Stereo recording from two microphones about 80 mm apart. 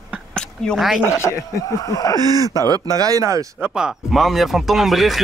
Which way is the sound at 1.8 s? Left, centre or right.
Left.